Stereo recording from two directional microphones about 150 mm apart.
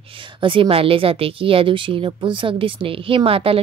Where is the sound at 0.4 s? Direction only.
35° right (ahead or behind).